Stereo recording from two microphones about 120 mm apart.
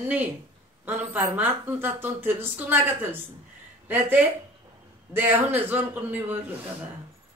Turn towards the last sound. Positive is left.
turn(degrees=-15)  # may be behind; listen again after turning